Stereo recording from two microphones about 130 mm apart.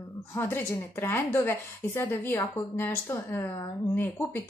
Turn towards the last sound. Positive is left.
turn(degrees=15)  # may be behind; listen again after turning